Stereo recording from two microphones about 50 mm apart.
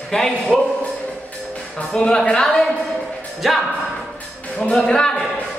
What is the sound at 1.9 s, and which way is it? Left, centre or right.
Speech, centre.